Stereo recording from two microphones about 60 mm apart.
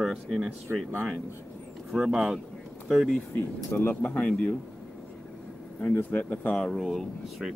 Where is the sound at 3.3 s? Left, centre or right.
Left.